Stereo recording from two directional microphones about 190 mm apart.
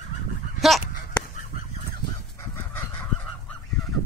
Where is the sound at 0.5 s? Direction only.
Centre (ahead or behind).